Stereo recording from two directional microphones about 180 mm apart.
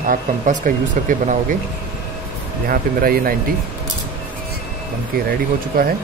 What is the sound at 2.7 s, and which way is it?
Speech, 55° right (ahead or behind).